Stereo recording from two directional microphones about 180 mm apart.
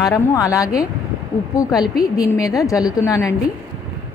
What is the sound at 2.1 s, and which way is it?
A woman's voice, 20° left (ahead or behind).